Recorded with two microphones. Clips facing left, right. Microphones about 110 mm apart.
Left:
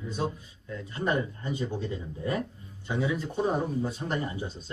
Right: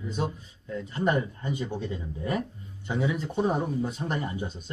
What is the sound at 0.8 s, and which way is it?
Speech, 20° right (ahead or behind).